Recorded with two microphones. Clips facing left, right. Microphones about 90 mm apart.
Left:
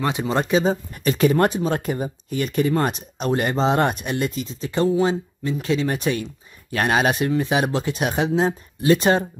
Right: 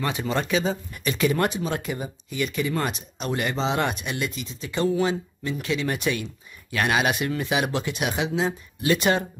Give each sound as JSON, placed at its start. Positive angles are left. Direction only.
{"t": 0.0, "sound": "speech", "side_deg": 20}